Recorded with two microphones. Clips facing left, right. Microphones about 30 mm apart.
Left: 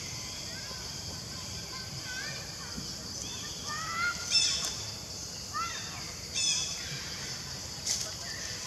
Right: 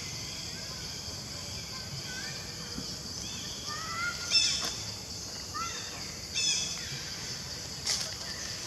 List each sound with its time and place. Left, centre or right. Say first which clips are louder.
3.8 s crow: left 3 dB; centre
4.1 s a sound: right 1 dB; centre
6.3 s squawk: right 1 dB; centre
7.8 s vehicle: right 2 dB; right